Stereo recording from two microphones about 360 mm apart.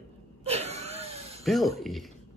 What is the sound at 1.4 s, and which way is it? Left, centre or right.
Speech, centre.